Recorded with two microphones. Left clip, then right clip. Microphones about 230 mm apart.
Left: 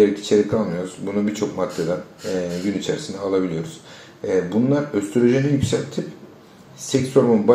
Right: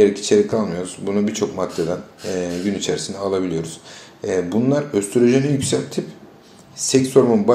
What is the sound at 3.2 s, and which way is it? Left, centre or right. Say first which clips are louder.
Speech: left 2 dB; right.